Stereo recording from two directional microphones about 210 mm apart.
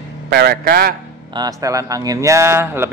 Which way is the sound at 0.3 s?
50° right (ahead or behind).